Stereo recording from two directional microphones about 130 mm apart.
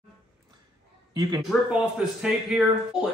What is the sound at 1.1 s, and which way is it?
Speech, 30° right (ahead or behind).